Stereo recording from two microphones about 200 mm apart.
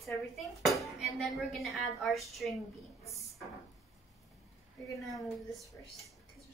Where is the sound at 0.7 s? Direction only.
Centre (ahead or behind).